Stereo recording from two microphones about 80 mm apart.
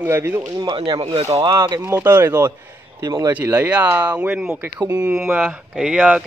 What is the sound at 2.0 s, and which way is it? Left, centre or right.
Speech, right.